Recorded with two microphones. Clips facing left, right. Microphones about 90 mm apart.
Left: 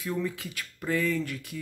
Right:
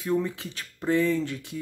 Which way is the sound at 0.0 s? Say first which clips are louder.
Right 4 dB; 30° right (ahead or behind).